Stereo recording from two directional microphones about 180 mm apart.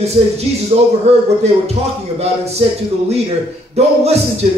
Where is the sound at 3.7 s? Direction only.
35° right (ahead or behind).